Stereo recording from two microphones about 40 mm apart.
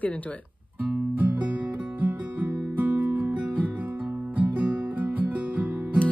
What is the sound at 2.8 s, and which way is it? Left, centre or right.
Music, right.